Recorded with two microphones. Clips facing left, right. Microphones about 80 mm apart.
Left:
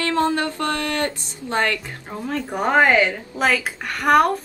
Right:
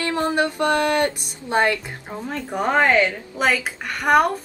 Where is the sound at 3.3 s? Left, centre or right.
Centre.